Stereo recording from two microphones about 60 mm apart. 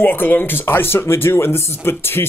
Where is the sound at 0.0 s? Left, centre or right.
Left.